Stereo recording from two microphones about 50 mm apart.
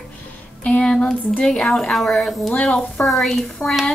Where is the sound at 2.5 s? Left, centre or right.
Left.